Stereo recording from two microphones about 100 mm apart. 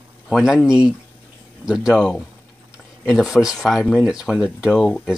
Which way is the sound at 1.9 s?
5° left (ahead or behind).